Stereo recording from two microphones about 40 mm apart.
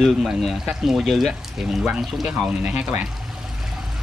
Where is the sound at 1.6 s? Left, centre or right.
Centre.